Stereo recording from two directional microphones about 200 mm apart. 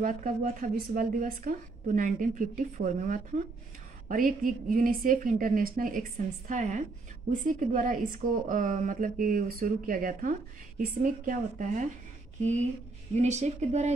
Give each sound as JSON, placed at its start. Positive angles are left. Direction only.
{"t": 0.0, "sound": "a woman's voice", "side_deg": -40}
{"t": 13.1, "sound": "a woman's voice", "side_deg": -35}